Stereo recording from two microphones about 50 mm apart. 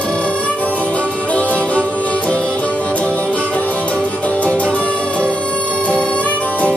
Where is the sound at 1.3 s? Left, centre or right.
Left.